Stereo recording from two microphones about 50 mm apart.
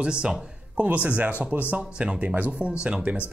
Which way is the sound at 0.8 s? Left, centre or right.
Right.